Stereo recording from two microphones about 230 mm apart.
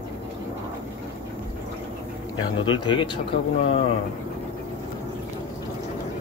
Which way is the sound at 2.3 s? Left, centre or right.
Centre.